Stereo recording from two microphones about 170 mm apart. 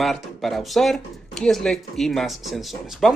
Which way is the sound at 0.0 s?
Centre (ahead or behind).